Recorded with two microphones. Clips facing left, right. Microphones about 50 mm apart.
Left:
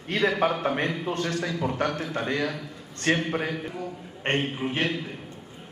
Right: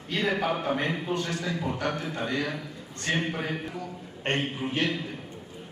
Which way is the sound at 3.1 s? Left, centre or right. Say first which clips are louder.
Left 4 dB; left.